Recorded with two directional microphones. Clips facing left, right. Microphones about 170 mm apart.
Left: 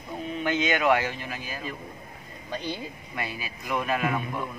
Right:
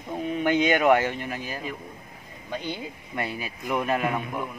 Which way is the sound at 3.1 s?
50° right (ahead or behind).